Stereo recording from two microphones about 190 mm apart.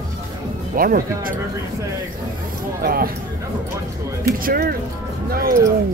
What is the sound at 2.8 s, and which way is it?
Speech, 50° right (ahead or behind).